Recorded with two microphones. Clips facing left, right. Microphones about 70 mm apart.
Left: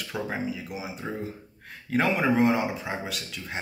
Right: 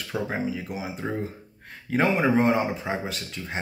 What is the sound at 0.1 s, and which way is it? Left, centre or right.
Speech, right.